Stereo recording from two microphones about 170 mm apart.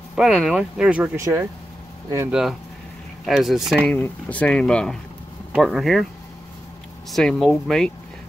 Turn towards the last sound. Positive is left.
turn(degrees=0)  # may be behind; listen again after turning